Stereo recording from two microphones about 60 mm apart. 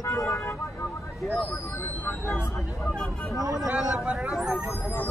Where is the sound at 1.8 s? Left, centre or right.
Left.